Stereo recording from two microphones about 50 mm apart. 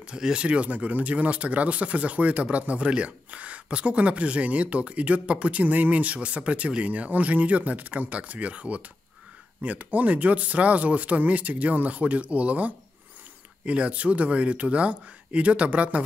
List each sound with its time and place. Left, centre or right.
0.0 s speech: centre